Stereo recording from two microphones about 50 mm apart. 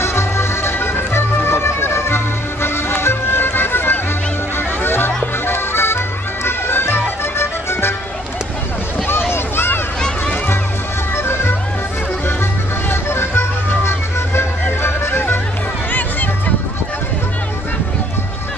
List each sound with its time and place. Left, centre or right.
0.0 s music: left
9.3 s a sound: left
11.1 s music: left
12.9 s music: left
15.9 s music: left